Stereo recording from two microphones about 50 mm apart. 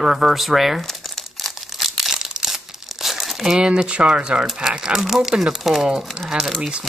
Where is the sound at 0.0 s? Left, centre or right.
Centre.